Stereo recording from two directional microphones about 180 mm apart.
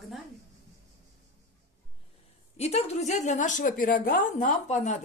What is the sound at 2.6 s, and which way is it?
A woman's voice, 35° left (ahead or behind).